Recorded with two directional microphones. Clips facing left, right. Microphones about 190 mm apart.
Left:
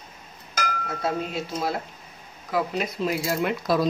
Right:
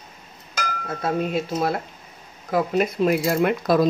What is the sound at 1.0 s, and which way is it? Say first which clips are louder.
Speech: right 5 dB; 55° right (ahead or behind).